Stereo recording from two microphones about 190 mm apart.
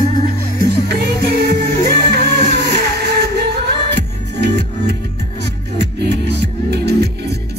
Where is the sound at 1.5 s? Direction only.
60° right (ahead or behind).